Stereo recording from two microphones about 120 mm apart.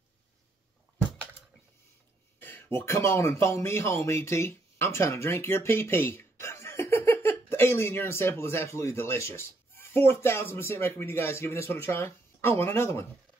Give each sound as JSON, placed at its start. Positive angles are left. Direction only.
{"t": 2.4, "sound": "speech", "side_deg": 20}